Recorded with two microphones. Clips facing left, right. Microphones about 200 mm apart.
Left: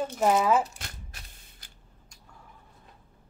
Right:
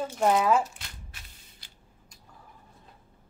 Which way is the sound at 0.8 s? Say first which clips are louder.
Left 3 dB; 45° left (ahead or behind).